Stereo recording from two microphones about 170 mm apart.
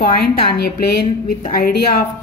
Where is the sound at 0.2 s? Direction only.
70° left (ahead or behind).